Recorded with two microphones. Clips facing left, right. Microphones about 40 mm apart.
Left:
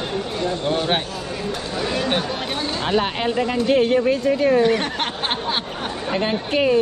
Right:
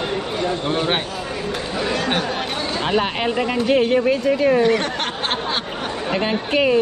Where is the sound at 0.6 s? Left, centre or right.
Centre.